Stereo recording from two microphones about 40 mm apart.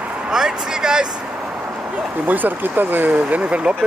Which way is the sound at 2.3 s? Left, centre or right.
Right.